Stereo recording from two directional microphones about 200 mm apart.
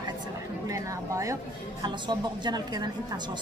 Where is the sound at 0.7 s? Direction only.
15° right (ahead or behind).